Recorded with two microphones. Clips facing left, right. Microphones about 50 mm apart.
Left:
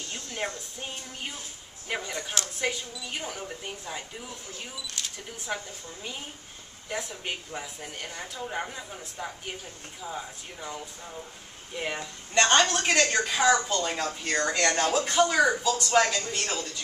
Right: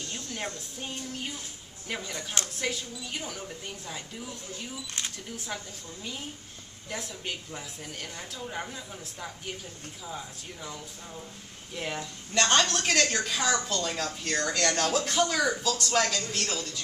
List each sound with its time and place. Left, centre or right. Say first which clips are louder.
0.1 s a woman's voice: left 4 dB; centre
6.9 s a woman's voice: left 2 dB; centre